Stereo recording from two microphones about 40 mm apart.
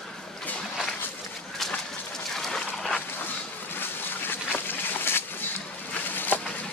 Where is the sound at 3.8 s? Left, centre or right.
Left.